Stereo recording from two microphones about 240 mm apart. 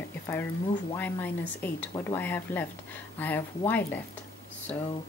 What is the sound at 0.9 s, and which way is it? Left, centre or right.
Speech, centre.